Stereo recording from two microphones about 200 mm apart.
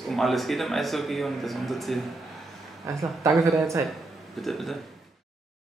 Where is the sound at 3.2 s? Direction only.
15° right (ahead or behind).